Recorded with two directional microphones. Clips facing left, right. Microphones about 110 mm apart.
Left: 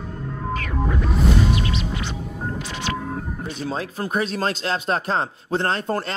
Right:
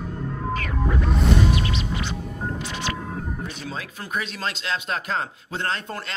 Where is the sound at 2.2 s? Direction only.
Centre (ahead or behind).